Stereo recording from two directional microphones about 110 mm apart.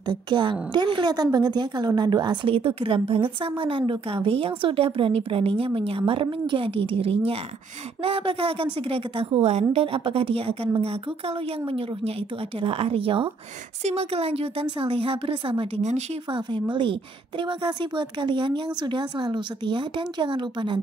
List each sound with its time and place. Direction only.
0.0 s a woman's voice: 45° right (ahead or behind)
2.5 s a woman's voice: 55° right (ahead or behind)
13.8 s a woman's voice: 65° right (ahead or behind); by 20.8 s 45° right (ahead or behind)